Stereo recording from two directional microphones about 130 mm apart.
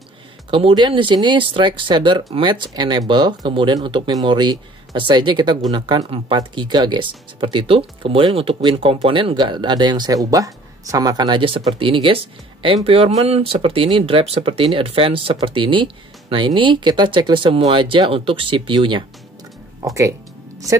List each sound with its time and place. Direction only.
0.5 s speech: 45° right (ahead or behind)
19.8 s music: 25° right (ahead or behind)